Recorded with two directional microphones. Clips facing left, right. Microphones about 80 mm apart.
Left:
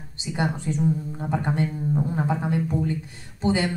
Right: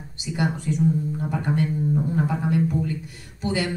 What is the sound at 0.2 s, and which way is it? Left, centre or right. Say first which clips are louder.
Speech: right 1 dB; left.